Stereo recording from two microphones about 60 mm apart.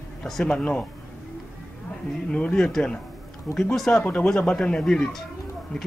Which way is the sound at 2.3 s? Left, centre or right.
Centre.